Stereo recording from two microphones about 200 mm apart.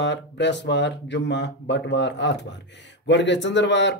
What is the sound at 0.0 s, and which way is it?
Speech, 60° left (ahead or behind).